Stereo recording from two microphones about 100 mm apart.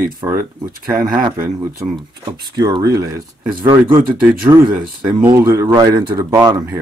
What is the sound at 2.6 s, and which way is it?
Speech, 40° right (ahead or behind).